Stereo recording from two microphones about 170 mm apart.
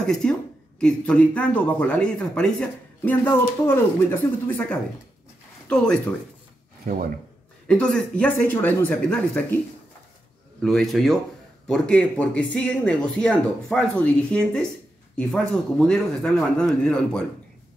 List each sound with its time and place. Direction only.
0.0 s speech: 5° left (ahead or behind)
6.8 s speech: 55° right (ahead or behind)
7.6 s speech: 5° left (ahead or behind)
10.6 s speech: centre (ahead or behind)